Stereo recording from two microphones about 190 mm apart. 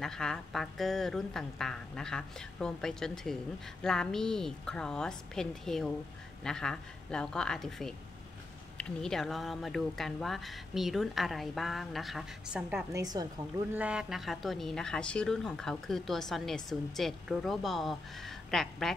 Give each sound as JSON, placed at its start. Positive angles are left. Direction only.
{"t": 0.0, "sound": "a woman's voice", "side_deg": 5}
{"t": 12.9, "sound": "a woman's voice", "side_deg": -20}
{"t": 13.7, "sound": "a woman's voice", "side_deg": -5}